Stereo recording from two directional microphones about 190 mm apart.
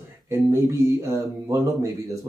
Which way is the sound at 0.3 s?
15° right (ahead or behind).